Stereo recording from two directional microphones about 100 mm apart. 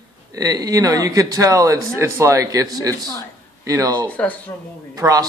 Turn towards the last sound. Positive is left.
turn(degrees=-35)  # may be behind; listen again after turning